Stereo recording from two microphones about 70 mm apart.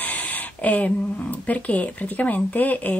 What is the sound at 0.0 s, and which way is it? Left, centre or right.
Speech, left.